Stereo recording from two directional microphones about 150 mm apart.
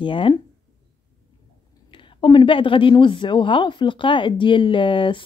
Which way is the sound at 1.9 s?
35° left (ahead or behind).